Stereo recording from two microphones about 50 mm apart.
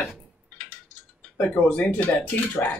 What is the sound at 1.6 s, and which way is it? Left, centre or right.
Speech, left.